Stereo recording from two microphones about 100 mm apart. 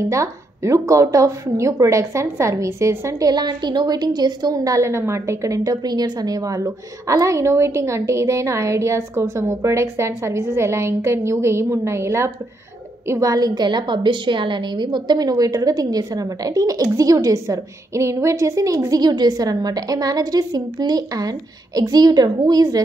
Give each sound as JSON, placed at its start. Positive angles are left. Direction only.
{"t": 0.0, "sound": "a woman's voice", "side_deg": -30}
{"t": 5.6, "sound": "a woman's voice", "side_deg": -45}